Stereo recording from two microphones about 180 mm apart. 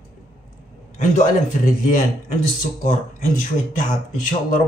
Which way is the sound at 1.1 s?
45° left (ahead or behind).